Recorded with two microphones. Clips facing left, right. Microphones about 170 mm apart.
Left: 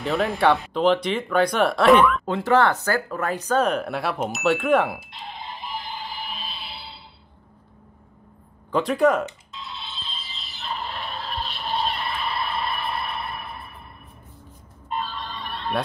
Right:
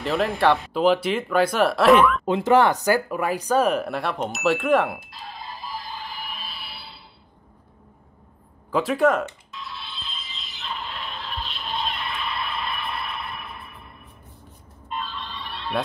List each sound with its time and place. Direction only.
0.0 s speech: centre (ahead or behind)
2.2 s speech: 15° right (ahead or behind); by 5.1 s centre (ahead or behind)
5.1 s music: 25° left (ahead or behind)
8.7 s speech: centre (ahead or behind)
9.2 s music: 25° left (ahead or behind)
14.9 s a sound: 40° left (ahead or behind)